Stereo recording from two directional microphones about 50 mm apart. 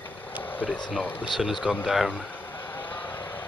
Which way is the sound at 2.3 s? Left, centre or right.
Left.